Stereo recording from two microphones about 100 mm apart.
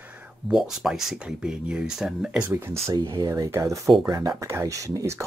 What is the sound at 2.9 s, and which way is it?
Speech, 40° right (ahead or behind).